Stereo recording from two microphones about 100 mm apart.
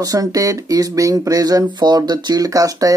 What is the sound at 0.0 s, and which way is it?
Speech, 40° right (ahead or behind).